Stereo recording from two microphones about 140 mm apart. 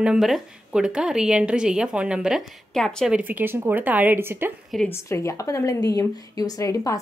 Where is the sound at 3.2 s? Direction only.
15° right (ahead or behind).